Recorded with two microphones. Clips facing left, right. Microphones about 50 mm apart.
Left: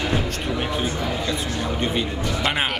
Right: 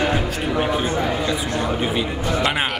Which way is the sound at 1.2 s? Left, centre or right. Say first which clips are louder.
Right 3 dB; centre.